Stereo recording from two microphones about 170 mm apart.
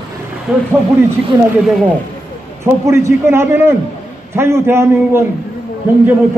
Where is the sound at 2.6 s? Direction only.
15° right (ahead or behind).